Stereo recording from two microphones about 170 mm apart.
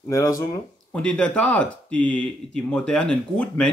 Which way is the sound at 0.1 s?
20° left (ahead or behind).